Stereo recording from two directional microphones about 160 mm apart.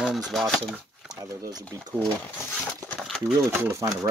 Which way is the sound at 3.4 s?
15° right (ahead or behind).